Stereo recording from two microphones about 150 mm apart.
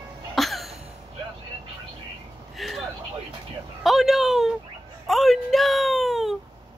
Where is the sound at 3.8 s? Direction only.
Centre (ahead or behind).